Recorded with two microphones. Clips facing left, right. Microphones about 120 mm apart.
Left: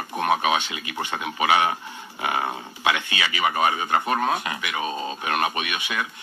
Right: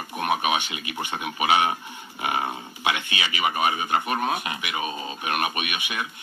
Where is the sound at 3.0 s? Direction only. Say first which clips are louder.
Left 2 dB; 20° right (ahead or behind).